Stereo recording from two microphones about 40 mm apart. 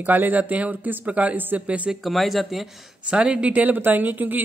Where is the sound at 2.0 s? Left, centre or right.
Centre.